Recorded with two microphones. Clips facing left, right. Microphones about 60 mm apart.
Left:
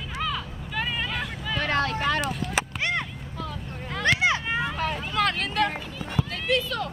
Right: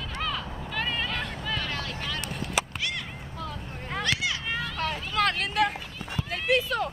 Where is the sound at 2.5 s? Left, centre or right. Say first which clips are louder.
Left 1 dB; left.